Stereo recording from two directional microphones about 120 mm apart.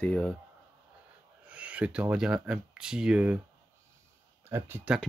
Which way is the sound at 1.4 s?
10° right (ahead or behind).